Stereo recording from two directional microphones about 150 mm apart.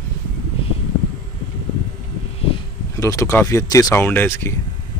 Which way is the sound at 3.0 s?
20° left (ahead or behind).